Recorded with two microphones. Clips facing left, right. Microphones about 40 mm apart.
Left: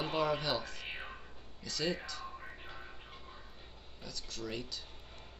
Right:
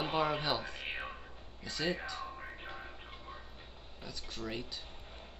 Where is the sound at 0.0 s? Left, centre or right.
Centre.